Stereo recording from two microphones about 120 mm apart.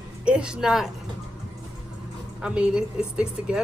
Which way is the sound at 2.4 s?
10° right (ahead or behind).